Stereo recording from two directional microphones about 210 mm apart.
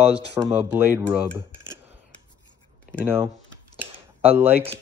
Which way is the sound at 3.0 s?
10° right (ahead or behind).